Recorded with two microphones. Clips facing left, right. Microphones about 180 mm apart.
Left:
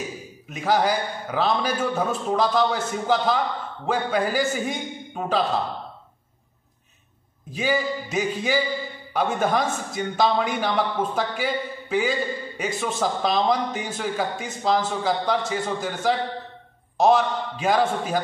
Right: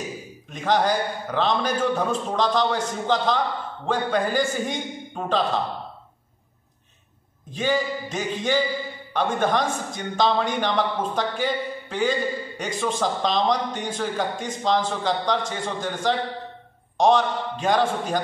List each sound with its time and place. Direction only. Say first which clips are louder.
0.5 s a man's voice: even; 5° left (ahead or behind)
7.5 s a man's voice: even; 10° left (ahead or behind)